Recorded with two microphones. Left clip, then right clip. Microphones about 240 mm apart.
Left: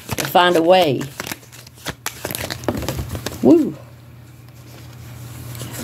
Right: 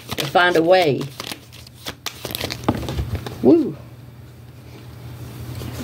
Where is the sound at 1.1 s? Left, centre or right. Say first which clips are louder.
Left 2 dB; centre.